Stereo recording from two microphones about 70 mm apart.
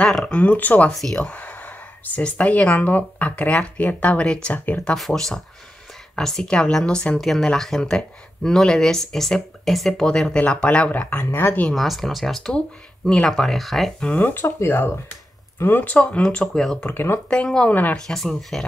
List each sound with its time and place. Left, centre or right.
0.0 s speech: centre
0.3 s speech: left
4.9 s speech: centre
7.2 s speech: centre; by 11.6 s left
11.7 s speech: centre
13.9 s speech: centre
16.8 s speech: left
17.3 s speech: centre